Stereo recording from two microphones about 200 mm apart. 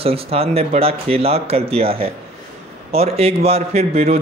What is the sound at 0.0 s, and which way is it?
A man's voice, 30° right (ahead or behind).